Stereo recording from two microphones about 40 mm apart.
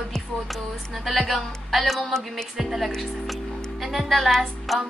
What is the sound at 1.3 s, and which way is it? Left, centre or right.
Speech, centre.